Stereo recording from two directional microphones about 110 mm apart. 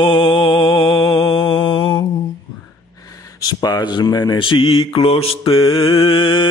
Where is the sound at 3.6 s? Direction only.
40° left (ahead or behind).